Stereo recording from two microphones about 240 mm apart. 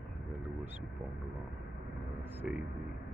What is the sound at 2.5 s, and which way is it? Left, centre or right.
Speech, centre.